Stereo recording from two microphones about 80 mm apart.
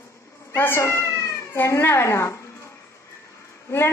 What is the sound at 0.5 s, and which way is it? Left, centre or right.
A woman's voice, left.